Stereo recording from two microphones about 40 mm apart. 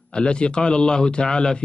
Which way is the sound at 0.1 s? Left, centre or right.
Left.